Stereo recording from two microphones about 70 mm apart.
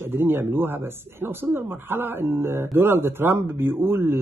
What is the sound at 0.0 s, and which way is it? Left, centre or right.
Speech, right.